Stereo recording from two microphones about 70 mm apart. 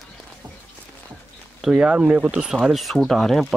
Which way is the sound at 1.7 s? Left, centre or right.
Centre.